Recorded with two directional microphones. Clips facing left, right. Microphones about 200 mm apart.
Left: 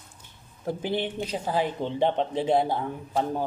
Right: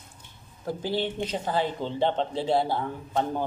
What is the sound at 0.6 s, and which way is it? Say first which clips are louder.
Speech: even; 20° left (ahead or behind).